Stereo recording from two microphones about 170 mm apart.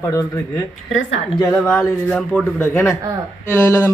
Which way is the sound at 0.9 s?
90° left.